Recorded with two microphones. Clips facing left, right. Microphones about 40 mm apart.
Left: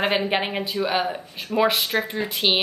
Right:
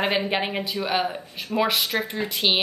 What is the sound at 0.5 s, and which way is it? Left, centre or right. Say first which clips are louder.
Speech: left 1 dB; centre.